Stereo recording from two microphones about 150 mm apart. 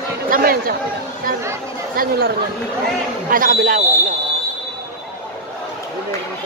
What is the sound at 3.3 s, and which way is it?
Speech, 65° right (ahead or behind).